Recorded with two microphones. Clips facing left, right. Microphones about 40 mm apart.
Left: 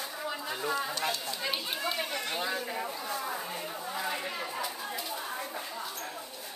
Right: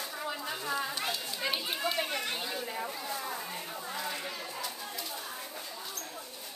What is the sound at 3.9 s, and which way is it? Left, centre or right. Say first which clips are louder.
Chatter: left 4 dB; centre.